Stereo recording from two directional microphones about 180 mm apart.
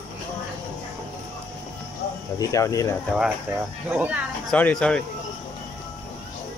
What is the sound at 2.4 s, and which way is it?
Speech, 20° left (ahead or behind).